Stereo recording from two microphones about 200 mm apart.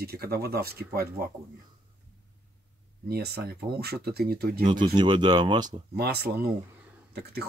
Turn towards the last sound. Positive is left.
turn(degrees=-50)  # may be behind; listen again after turning